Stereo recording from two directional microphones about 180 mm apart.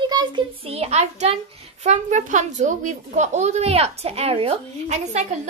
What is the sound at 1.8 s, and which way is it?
A woman's voice, 40° right (ahead or behind).